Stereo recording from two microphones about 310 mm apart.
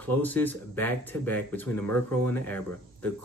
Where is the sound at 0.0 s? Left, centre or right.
Centre.